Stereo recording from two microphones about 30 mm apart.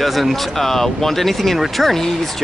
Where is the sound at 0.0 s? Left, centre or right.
Centre.